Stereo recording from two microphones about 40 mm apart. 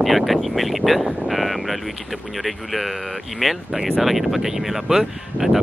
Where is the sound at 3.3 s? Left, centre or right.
Centre.